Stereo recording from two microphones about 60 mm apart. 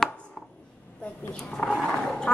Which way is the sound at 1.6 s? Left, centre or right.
Centre.